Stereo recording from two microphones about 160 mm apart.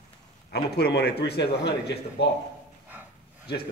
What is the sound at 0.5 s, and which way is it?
A man's voice, 90° left.